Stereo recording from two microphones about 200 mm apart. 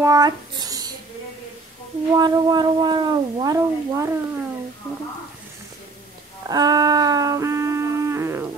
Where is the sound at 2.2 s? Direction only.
20° right (ahead or behind).